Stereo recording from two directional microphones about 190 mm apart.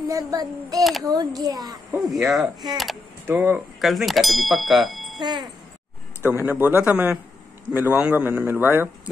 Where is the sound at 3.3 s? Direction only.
10° right (ahead or behind).